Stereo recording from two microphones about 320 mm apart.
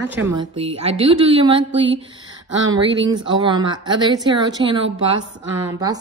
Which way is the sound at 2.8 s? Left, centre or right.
Right.